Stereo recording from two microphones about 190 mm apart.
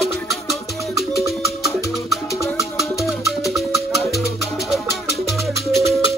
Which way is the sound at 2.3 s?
15° left (ahead or behind).